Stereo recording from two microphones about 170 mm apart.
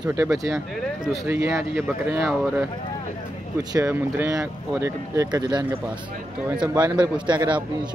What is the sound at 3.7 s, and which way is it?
Speech, 15° right (ahead or behind).